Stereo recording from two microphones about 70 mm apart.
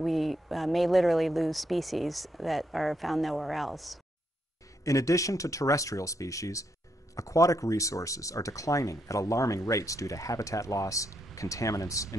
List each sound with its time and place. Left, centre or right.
0.0 s speech: centre
4.8 s speech: left